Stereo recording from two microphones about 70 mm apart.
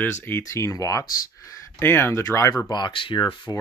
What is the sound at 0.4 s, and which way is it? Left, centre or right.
Speech, left.